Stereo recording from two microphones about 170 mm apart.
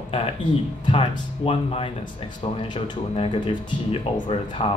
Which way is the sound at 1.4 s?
35° left (ahead or behind).